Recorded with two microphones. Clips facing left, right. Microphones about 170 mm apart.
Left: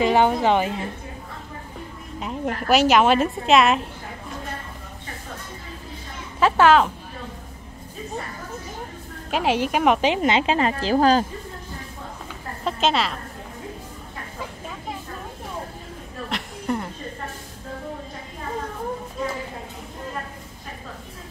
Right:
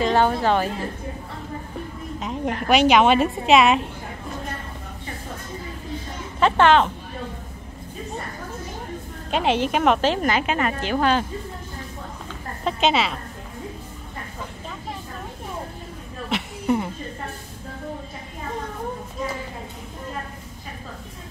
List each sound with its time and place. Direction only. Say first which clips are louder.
0.0 s a woman's voice: left 1 dB; 15° left (ahead or behind)
2.1 s a woman's voice: even; centre (ahead or behind)
6.4 s a woman's voice: even; 5° left (ahead or behind)
9.3 s a woman's voice: right 1 dB; 5° left (ahead or behind); by 11.2 s 35° left (ahead or behind)
12.6 s a woman's voice: right 1 dB; centre (ahead or behind)
16.3 s a sound: right 4 dB; 5° right (ahead or behind)